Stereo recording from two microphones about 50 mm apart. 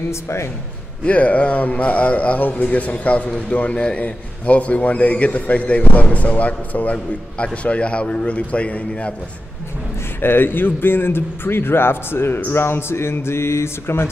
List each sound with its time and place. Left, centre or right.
0.1 s speech: left
1.0 s a man's voice: left
10.2 s a man's voice: left